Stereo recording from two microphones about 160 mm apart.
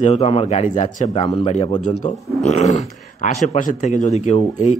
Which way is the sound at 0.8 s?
50° left (ahead or behind).